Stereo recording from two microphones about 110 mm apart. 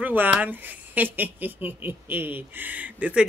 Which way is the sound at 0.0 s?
15° right (ahead or behind).